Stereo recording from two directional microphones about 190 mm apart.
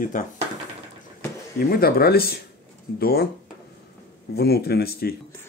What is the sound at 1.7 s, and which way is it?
Speech, 55° left (ahead or behind).